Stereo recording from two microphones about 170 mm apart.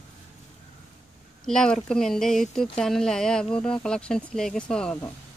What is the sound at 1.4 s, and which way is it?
Speech, 5° left (ahead or behind).